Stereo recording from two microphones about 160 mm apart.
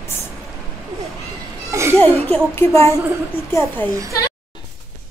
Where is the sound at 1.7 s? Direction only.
15° right (ahead or behind).